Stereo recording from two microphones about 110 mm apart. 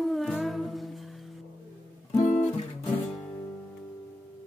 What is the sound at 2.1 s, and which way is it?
Guitar, 90° left.